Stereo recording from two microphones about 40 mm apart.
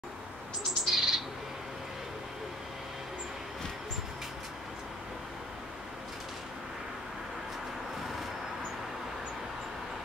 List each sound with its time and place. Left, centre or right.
0.7 s bird: centre